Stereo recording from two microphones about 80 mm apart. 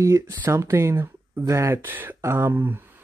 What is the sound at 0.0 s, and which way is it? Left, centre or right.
Speech, right.